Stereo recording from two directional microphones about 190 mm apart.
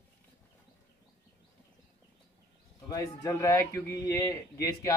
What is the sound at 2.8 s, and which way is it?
A man's voice, 15° left (ahead or behind).